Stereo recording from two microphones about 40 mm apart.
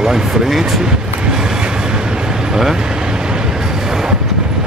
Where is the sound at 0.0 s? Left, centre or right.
Centre.